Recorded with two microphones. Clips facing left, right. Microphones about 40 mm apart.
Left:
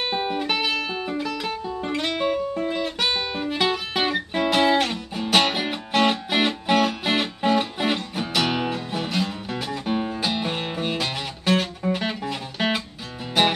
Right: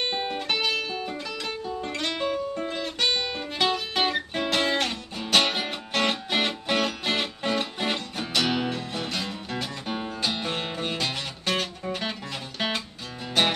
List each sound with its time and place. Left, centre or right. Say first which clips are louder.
0.0 s music: left 4 dB; centre